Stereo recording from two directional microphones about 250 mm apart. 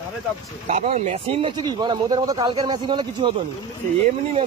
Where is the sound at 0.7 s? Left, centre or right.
Right.